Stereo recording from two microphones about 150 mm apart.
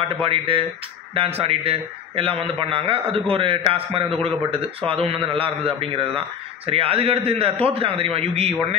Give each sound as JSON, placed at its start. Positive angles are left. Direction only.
{"t": 0.2, "sound": "a man's voice", "side_deg": -35}